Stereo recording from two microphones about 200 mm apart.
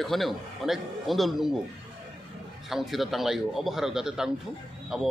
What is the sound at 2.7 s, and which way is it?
A man's voice, centre (ahead or behind).